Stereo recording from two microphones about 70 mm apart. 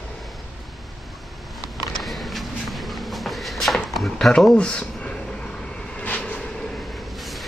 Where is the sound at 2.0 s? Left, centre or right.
Centre.